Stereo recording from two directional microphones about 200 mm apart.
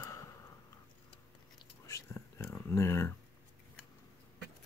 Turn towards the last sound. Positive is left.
turn(degrees=15)  # may be behind; listen again after turning